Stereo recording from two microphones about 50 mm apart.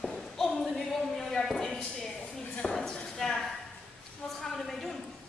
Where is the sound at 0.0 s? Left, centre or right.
Centre.